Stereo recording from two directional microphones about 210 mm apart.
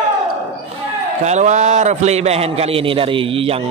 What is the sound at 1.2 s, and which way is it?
A man's voice, 35° right (ahead or behind).